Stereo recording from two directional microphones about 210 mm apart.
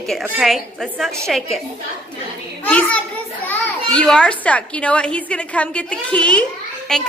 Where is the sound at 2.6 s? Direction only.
5° left (ahead or behind).